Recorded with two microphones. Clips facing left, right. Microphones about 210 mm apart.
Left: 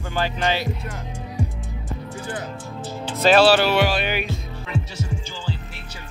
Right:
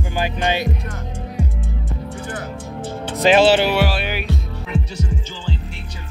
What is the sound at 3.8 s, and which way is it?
Speech, 5° right (ahead or behind).